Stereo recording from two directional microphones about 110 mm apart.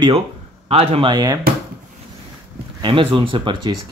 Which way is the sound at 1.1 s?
40° right (ahead or behind).